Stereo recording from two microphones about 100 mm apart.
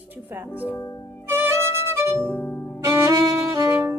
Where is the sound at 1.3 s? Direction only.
25° right (ahead or behind).